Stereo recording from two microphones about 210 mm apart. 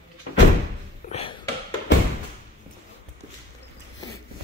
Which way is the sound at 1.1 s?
30° left (ahead or behind).